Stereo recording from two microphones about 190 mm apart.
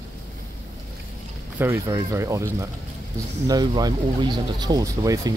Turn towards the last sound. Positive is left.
turn(degrees=-20)  # may be behind; listen again after turning